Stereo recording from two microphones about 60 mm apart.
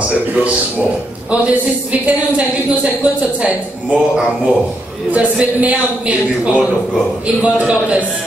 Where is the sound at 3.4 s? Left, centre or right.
Centre.